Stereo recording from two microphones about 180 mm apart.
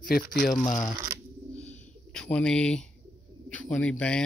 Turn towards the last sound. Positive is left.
turn(degrees=5)  # may be behind; listen again after turning